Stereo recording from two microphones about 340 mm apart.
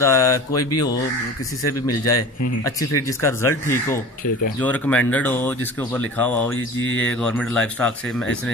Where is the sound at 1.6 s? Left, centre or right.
Left.